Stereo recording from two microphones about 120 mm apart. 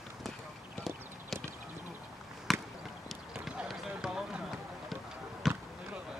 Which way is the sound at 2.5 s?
Centre (ahead or behind).